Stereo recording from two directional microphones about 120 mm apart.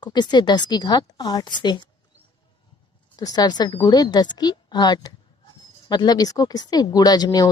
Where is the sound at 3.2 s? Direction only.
35° left (ahead or behind).